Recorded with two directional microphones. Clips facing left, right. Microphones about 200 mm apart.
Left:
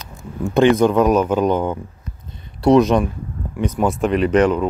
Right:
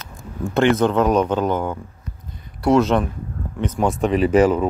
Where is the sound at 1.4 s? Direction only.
20° left (ahead or behind).